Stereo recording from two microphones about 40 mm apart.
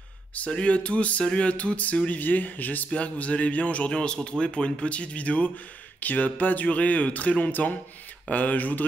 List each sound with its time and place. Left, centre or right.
0.5 s speech: left
3.0 s speech: left
3.9 s speech: left